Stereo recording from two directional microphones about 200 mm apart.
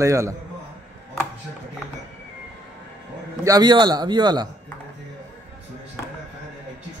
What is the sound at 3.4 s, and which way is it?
A man's voice, 20° right (ahead or behind).